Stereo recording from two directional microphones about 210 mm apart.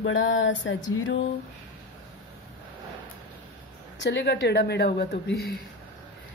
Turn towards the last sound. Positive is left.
turn(degrees=45)  # may be behind; listen again after turning